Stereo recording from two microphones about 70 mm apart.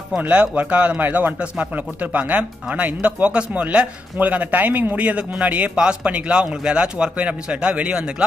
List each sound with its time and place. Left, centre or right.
0.2 s a man's voice: right